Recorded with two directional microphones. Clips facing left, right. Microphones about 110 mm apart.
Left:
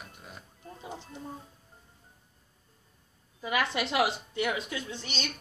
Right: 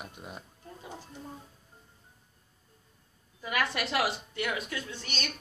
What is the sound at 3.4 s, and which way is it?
A woman's voice, 20° left (ahead or behind).